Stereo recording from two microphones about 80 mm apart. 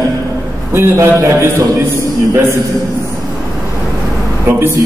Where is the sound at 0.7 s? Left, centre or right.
Right.